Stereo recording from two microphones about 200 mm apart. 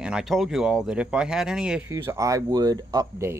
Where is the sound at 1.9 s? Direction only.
15° right (ahead or behind).